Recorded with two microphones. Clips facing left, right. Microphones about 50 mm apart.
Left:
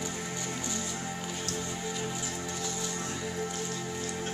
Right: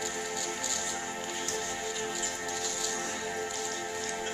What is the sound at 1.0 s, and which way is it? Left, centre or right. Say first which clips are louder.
Music: even; right.